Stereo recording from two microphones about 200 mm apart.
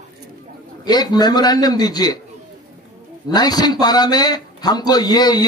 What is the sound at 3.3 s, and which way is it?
A man's voice, 20° left (ahead or behind).